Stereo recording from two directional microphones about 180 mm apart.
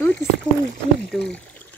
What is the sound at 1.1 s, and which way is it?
Speech, centre (ahead or behind).